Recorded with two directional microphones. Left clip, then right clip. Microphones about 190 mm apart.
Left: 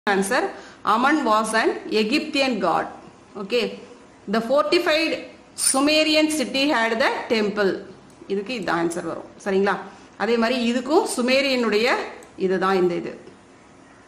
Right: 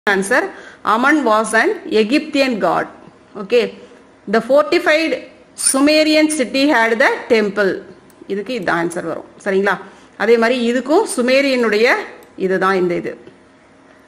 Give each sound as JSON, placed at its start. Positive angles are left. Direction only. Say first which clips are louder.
{"t": 0.3, "sound": "a woman's voice", "louder": "right 6 dB", "side_deg": -30}